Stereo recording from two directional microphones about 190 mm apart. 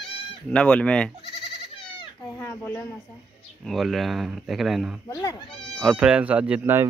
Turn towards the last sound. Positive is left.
turn(degrees=-10)  # may be behind; listen again after turning